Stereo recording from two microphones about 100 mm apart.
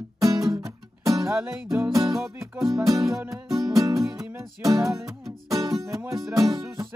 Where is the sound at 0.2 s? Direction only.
35° right (ahead or behind).